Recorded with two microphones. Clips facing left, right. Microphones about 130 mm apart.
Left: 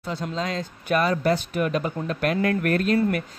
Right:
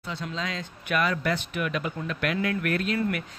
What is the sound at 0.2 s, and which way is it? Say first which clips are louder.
Speech: left 5 dB; 40° left (ahead or behind).